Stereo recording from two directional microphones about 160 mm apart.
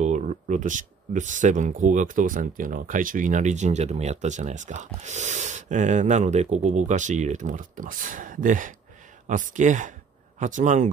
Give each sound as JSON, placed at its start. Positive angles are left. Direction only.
{"t": 0.0, "sound": "speech", "side_deg": -50}